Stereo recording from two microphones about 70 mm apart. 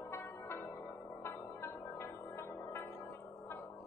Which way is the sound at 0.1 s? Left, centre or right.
Left.